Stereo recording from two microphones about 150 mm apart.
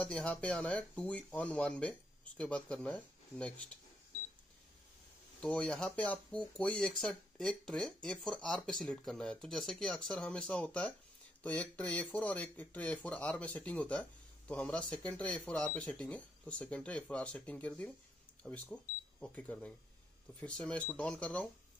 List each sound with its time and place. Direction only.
0.0 s speech: 10° left (ahead or behind)
5.4 s speech: 5° left (ahead or behind)